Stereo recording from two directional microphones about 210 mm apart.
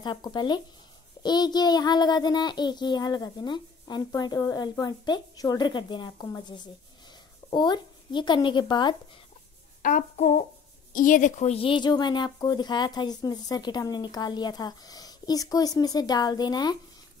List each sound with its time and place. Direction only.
0.0 s a woman's voice: 20° left (ahead or behind)
9.8 s a woman's voice: 40° left (ahead or behind); by 16.7 s 20° left (ahead or behind)